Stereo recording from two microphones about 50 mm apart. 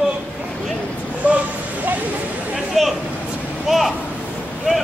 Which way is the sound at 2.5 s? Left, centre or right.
Centre.